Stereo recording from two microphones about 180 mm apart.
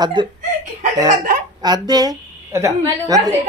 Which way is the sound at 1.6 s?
20° right (ahead or behind).